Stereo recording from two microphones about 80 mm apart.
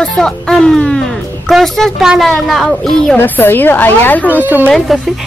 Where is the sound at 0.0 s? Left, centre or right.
Centre.